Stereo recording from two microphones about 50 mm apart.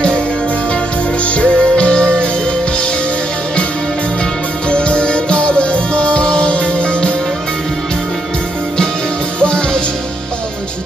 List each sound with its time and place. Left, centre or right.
1.2 s music: left
4.6 s music: left
9.4 s music: centre